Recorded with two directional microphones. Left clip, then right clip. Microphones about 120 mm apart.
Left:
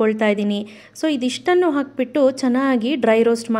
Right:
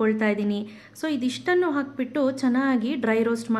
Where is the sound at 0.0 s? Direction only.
50° left (ahead or behind).